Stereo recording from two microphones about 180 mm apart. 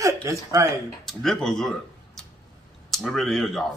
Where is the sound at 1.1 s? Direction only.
Centre (ahead or behind).